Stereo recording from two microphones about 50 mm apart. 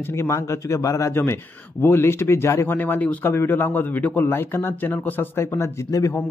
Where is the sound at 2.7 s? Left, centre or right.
Left.